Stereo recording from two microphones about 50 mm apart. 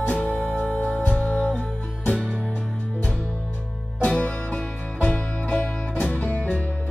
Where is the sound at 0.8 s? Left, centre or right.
Left.